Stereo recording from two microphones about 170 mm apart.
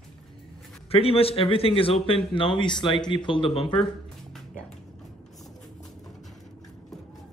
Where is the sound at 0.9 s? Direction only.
35° left (ahead or behind).